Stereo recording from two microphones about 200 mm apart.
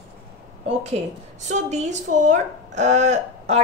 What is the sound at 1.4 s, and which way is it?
A woman's voice, 35° right (ahead or behind).